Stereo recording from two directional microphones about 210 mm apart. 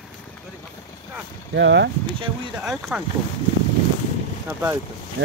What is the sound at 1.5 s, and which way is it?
Speech, 55° right (ahead or behind).